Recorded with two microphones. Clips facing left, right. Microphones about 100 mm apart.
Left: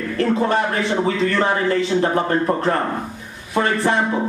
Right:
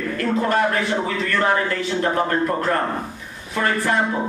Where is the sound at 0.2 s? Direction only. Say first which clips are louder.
Left 2 dB; 20° left (ahead or behind).